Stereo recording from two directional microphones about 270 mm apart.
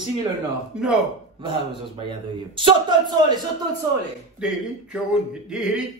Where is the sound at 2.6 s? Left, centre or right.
Centre.